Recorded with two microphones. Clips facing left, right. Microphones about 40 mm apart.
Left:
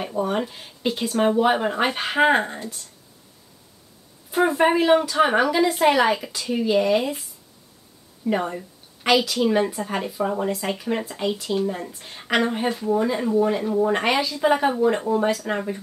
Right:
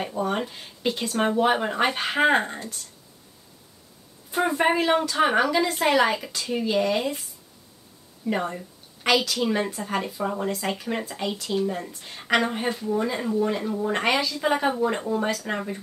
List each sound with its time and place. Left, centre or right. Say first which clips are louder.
0.1 s speech: left 2 dB; centre
4.5 s speech: left 4 dB; centre
8.3 s speech: left 3 dB; centre
12.6 s speech: left 3 dB; centre
12.9 s speech: left 5 dB; centre